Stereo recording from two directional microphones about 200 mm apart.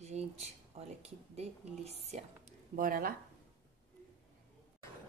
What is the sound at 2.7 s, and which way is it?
Speech, 45° right (ahead or behind).